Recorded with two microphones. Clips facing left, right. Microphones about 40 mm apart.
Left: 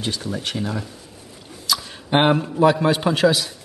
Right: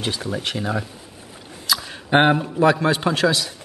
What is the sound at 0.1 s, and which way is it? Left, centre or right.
Speech, centre.